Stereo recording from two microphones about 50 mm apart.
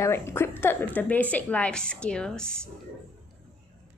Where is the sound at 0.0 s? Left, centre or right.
Left.